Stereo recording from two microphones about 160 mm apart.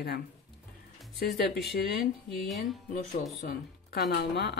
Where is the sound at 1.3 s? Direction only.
90° left.